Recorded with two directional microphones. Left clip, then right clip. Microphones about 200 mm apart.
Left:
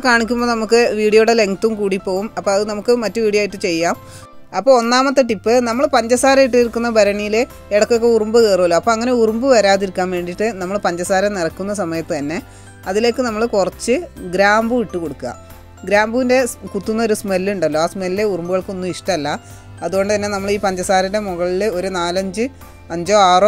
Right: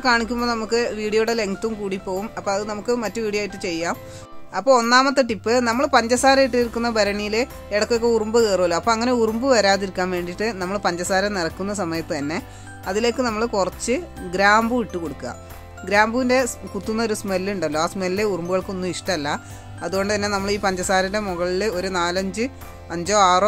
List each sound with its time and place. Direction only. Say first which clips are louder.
0.0 s speech: left 5 dB; 30° left (ahead or behind)
4.6 s speech: left 3 dB; 20° left (ahead or behind)